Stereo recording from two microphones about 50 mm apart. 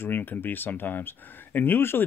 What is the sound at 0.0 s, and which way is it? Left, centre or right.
Speech, left.